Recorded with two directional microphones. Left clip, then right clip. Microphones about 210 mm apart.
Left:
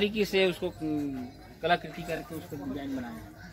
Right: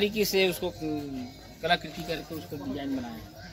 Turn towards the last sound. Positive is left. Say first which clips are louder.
# right 2 dB
turn(degrees=30)  # may be behind; listen again after turning